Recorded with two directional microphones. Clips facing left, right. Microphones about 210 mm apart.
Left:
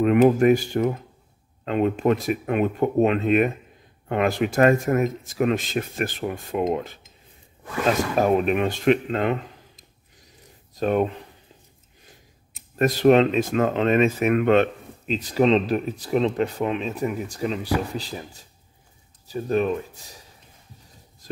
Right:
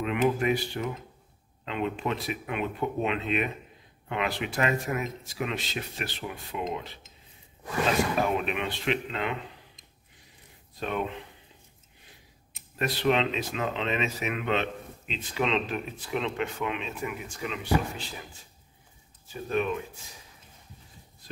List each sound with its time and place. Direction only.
0.0 s speech: 45° left (ahead or behind)
8.2 s speech: 40° left (ahead or behind)
10.7 s speech: 45° left (ahead or behind)
12.7 s speech: 45° left (ahead or behind)